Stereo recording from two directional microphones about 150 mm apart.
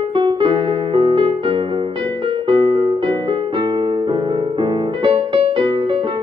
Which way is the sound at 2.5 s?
35° right (ahead or behind).